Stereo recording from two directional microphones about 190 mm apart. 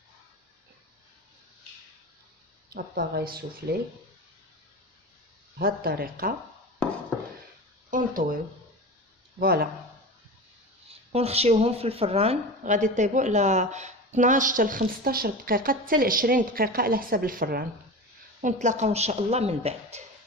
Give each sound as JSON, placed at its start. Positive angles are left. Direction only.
{"t": 2.7, "sound": "a woman's voice", "side_deg": -55}
{"t": 5.6, "sound": "a woman's voice", "side_deg": -50}
{"t": 7.9, "sound": "a woman's voice", "side_deg": -45}
{"t": 9.4, "sound": "a woman's voice", "side_deg": -50}
{"t": 10.9, "sound": "a woman's voice", "side_deg": -30}
{"t": 18.4, "sound": "a woman's voice", "side_deg": -40}